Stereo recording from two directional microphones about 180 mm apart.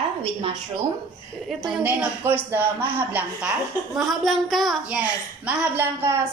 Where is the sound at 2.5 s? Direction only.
10° right (ahead or behind).